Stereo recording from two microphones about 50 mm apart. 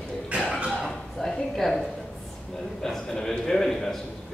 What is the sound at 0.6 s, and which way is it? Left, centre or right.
A man's voice, centre.